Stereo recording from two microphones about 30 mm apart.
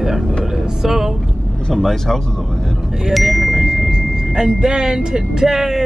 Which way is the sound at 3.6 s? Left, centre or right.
Centre.